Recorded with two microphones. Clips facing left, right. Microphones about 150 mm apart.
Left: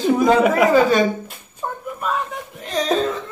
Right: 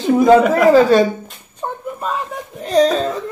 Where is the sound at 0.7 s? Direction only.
30° right (ahead or behind).